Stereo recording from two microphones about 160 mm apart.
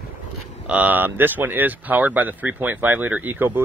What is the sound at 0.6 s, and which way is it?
Speech, 10° right (ahead or behind).